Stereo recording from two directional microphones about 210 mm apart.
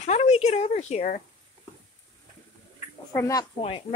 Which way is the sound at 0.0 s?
30° left (ahead or behind).